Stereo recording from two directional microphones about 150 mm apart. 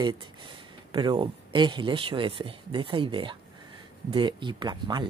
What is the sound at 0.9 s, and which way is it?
Speech, 30° right (ahead or behind).